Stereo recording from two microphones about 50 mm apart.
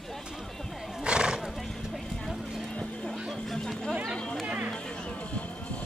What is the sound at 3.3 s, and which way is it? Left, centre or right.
Music, centre.